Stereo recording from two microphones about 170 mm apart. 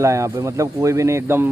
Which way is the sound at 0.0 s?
15° right (ahead or behind).